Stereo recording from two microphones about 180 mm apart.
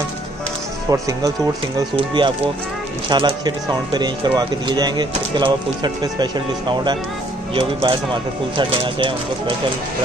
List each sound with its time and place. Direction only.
0.8 s speech: 20° right (ahead or behind)
2.0 s speech: 30° right (ahead or behind)